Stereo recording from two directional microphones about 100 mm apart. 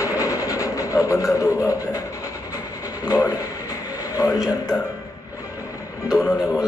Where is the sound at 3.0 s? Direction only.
35° left (ahead or behind).